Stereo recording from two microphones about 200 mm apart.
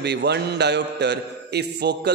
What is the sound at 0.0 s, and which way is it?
A man's voice, 55° right (ahead or behind).